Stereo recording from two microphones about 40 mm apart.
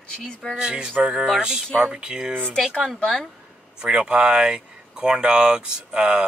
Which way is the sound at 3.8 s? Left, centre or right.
Right.